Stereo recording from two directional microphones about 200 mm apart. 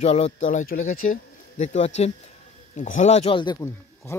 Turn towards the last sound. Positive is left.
turn(degrees=15)  # may be behind; listen again after turning